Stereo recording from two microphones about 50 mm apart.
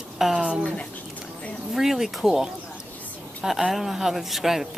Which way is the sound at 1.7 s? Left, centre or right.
Centre.